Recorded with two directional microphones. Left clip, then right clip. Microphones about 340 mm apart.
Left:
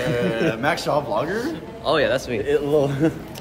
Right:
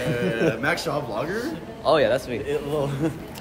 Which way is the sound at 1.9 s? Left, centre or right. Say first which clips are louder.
Even; centre.